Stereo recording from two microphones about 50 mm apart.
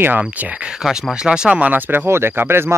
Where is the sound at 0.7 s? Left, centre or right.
Centre.